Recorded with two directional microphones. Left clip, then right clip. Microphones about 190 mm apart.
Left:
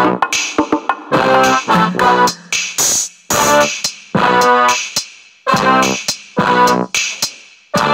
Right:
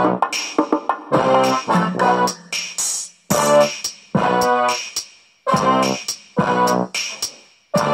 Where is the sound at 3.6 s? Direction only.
10° left (ahead or behind).